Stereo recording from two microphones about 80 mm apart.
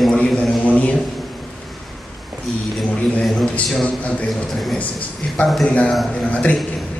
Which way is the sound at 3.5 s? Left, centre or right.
Centre.